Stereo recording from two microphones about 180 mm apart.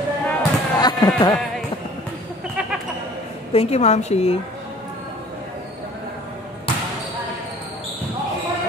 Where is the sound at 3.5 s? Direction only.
35° left (ahead or behind).